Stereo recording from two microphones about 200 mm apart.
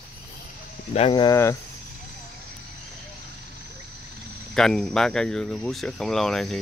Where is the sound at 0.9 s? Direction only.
25° left (ahead or behind).